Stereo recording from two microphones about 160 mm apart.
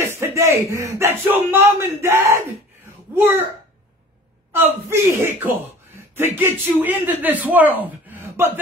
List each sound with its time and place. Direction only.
0.0 s speech: 15° right (ahead or behind)
4.5 s speech: 15° right (ahead or behind)